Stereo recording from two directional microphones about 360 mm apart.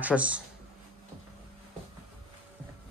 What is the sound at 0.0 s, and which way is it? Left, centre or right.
Speech, centre.